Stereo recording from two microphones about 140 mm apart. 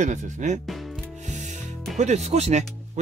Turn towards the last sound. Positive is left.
turn(degrees=-50)  # may be behind; listen again after turning